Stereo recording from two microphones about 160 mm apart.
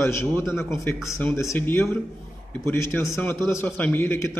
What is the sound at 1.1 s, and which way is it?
A man's voice, 20° left (ahead or behind).